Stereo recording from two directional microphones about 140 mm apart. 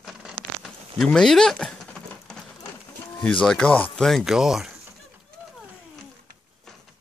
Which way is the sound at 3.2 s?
5° left (ahead or behind).